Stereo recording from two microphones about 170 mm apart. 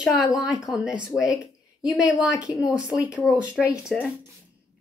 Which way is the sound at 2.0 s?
5° right (ahead or behind).